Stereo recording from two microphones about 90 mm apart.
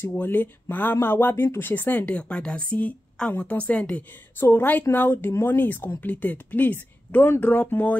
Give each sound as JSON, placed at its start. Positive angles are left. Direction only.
{"t": 0.0, "sound": "speech", "side_deg": 20}